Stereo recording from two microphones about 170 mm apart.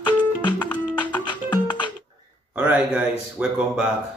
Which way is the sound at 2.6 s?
10° right (ahead or behind).